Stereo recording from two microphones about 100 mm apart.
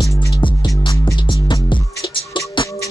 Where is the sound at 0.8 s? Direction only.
55° left (ahead or behind).